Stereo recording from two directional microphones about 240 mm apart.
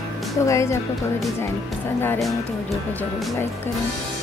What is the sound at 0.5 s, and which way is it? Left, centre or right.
Speech, centre.